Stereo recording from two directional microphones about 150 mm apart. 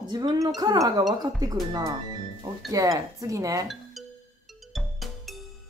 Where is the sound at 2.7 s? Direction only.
25° right (ahead or behind).